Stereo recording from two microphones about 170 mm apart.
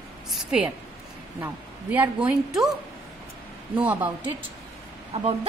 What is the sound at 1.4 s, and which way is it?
Speech, 10° right (ahead or behind).